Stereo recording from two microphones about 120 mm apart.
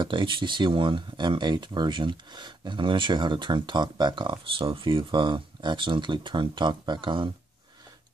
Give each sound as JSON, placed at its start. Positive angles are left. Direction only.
{"t": 0.0, "sound": "speech", "side_deg": -40}